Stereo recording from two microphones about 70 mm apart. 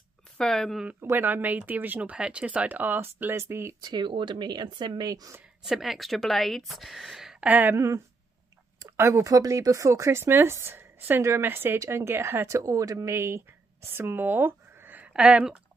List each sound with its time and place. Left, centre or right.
0.4 s speech: centre
1.0 s speech: right
3.8 s speech: right
5.6 s a woman's voice: centre
7.3 s speech: right
7.7 s speech: right
9.2 s speech: right
15.1 s speech: centre